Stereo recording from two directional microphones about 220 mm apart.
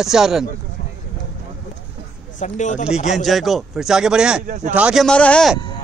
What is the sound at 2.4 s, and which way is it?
Speech, 35° left (ahead or behind).